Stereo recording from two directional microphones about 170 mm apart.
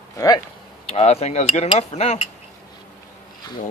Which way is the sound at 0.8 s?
35° left (ahead or behind).